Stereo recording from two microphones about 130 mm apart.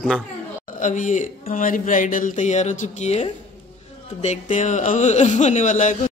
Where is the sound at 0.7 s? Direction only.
75° left (ahead or behind).